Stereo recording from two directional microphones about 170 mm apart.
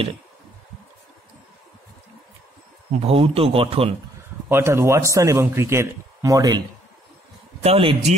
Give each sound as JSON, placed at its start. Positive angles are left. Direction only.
{"t": 3.0, "sound": "speech", "side_deg": -35}
{"t": 4.5, "sound": "speech", "side_deg": -15}
{"t": 7.6, "sound": "speech", "side_deg": -30}